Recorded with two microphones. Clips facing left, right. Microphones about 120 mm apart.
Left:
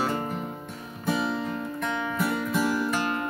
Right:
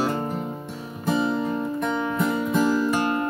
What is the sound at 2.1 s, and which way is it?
Music, 20° right (ahead or behind).